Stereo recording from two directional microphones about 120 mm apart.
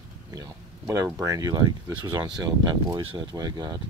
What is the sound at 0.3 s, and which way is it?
Speech, 30° right (ahead or behind).